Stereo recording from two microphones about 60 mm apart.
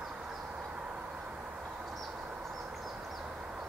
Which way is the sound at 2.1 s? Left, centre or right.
Centre.